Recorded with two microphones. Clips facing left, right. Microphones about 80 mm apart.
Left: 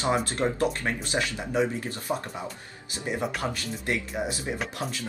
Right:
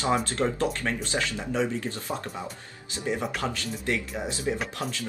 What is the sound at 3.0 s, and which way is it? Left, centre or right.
Speech, left.